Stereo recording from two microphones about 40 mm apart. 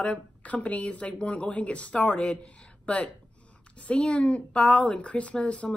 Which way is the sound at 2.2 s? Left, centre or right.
Left.